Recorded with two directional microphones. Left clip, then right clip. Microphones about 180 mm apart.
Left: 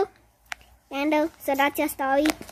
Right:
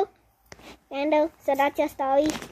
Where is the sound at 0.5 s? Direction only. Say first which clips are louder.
Left 10 dB; 10° left (ahead or behind).